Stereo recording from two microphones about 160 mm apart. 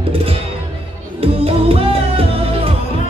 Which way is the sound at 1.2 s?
40° right (ahead or behind).